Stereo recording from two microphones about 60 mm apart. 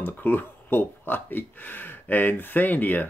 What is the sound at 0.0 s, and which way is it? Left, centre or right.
Speech, left.